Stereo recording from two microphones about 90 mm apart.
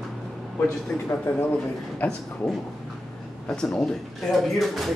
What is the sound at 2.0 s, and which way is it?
Speech, 15° left (ahead or behind).